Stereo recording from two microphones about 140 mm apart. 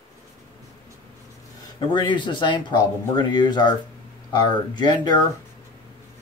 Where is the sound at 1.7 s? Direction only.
35° left (ahead or behind).